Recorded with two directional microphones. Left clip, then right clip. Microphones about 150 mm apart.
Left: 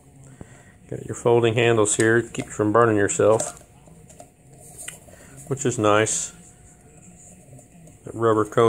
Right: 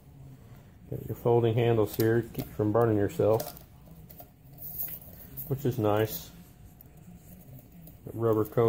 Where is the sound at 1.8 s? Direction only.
45° left (ahead or behind).